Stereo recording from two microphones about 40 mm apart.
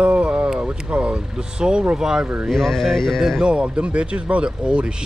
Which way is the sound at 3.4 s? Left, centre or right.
Right.